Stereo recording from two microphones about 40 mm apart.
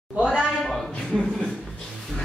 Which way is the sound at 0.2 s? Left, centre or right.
Right.